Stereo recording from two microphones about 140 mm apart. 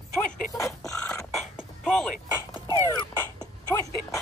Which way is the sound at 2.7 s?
25° right (ahead or behind).